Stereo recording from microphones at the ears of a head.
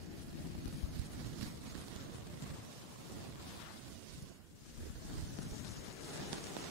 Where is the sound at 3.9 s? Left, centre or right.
Right.